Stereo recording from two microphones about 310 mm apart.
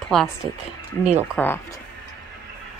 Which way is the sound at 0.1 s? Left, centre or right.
Centre.